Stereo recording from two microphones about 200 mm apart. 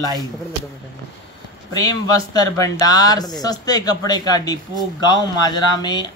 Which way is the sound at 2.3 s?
20° left (ahead or behind).